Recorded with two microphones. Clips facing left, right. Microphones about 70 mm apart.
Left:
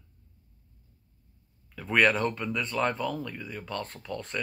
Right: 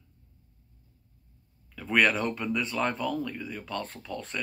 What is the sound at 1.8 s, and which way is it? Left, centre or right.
Speech, centre.